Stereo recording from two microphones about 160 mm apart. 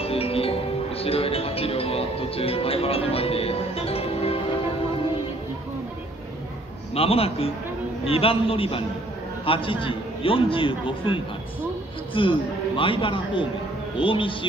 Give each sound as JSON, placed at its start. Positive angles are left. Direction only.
{"t": 0.0, "sound": "speech", "side_deg": 35}
{"t": 7.0, "sound": "a man's voice", "side_deg": 35}